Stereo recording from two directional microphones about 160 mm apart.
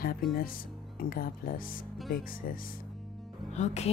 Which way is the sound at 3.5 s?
45° left (ahead or behind).